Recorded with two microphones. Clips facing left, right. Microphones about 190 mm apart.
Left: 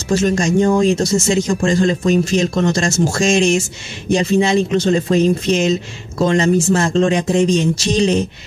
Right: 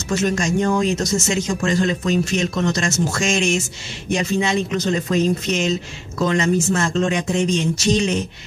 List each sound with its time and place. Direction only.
0.1 s speech: 30° left (ahead or behind)